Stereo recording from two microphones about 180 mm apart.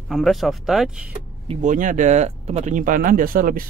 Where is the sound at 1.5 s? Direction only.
45° right (ahead or behind).